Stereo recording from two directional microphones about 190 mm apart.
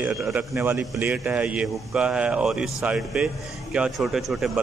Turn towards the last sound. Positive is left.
turn(degrees=0)  # may be behind; listen again after turning